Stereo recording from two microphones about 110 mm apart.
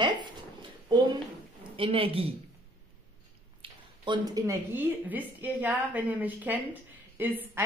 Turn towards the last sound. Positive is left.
turn(degrees=-20)  # may be behind; listen again after turning